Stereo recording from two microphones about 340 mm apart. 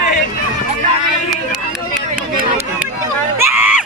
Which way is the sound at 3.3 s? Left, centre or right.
Centre.